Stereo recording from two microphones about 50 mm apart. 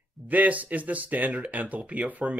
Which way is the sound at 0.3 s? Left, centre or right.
Right.